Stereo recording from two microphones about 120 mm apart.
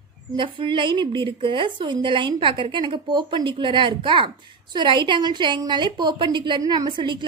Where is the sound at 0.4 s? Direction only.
45° right (ahead or behind).